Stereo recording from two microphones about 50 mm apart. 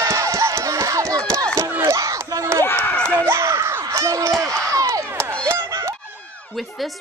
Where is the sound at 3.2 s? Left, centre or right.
Right.